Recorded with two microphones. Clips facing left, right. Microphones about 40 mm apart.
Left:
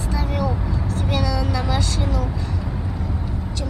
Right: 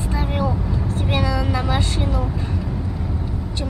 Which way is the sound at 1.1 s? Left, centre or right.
Right.